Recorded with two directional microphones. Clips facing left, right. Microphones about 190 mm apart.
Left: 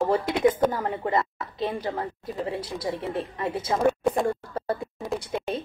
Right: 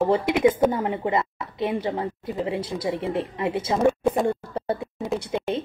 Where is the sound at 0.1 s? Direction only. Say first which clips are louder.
Right 2 dB; 25° right (ahead or behind).